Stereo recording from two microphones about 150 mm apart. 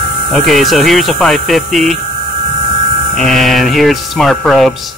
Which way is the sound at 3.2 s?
Centre (ahead or behind).